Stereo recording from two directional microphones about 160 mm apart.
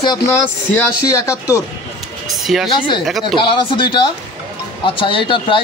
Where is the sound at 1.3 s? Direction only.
20° left (ahead or behind).